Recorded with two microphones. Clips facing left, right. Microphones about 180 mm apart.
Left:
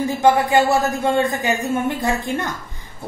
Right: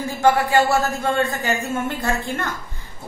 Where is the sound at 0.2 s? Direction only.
20° left (ahead or behind).